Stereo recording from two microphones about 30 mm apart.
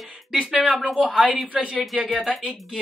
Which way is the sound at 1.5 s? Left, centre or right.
Right.